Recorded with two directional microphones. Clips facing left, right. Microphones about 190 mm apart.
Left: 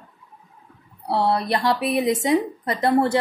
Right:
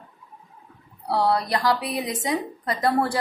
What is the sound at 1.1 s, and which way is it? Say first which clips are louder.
A woman's voice: left 1 dB; 25° left (ahead or behind).